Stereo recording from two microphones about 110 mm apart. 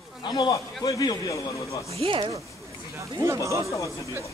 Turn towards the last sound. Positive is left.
turn(degrees=30)  # may be behind; listen again after turning